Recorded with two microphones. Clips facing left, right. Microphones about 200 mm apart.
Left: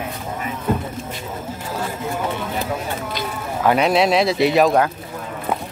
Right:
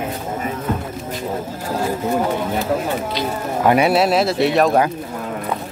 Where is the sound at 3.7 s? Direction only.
5° right (ahead or behind).